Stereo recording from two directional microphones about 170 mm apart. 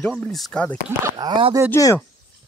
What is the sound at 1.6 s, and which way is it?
Speech, 15° left (ahead or behind).